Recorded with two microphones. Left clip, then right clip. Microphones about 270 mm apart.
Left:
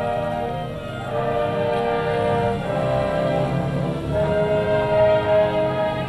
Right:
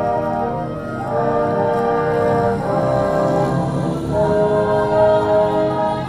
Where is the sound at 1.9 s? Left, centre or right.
Right.